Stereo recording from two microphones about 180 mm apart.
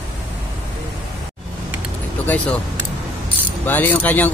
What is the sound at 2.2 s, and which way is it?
Speech, 10° left (ahead or behind).